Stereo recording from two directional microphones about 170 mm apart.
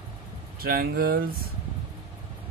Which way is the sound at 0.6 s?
65° right (ahead or behind).